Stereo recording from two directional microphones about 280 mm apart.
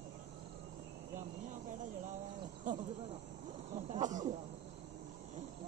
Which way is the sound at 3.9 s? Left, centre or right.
Right.